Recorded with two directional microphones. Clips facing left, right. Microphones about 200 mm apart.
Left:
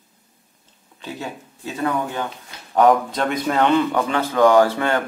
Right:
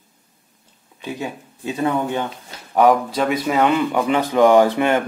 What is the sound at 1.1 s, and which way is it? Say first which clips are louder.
Speech: right 1 dB; 20° right (ahead or behind).